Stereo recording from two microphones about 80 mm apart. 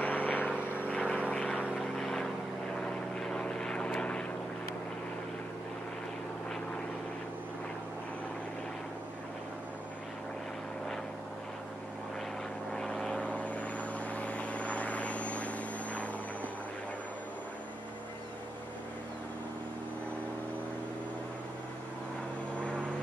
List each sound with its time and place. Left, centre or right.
0.0 s vehicle: centre
1.6 s vehicle: centre
2.0 s vehicle: centre
12.7 s vehicle: centre